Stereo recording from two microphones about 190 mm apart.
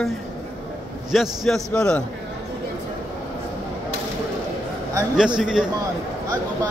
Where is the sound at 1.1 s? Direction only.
Centre (ahead or behind).